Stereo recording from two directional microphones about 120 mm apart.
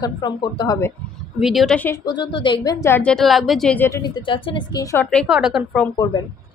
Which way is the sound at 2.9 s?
10° left (ahead or behind).